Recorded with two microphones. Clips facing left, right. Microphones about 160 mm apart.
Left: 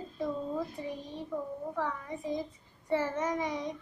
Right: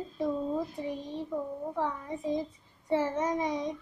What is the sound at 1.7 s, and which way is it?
A child's voice, 25° right (ahead or behind).